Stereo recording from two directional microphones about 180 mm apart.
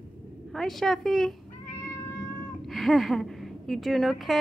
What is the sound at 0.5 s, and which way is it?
Speech, centre (ahead or behind).